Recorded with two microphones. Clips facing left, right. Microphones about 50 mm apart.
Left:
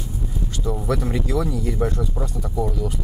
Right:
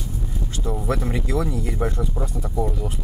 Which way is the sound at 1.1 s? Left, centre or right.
Centre.